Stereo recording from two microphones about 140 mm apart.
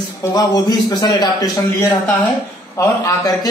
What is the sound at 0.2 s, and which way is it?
A man's voice, 25° left (ahead or behind).